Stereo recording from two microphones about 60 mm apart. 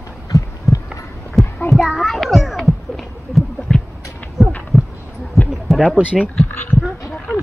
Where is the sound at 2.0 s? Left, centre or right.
Centre.